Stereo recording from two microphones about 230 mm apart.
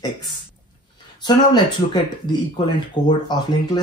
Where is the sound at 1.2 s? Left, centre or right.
Centre.